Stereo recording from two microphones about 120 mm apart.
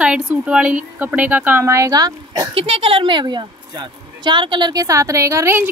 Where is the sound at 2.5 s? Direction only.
50° right (ahead or behind).